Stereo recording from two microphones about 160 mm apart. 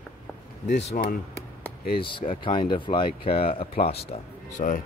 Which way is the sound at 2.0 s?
30° left (ahead or behind).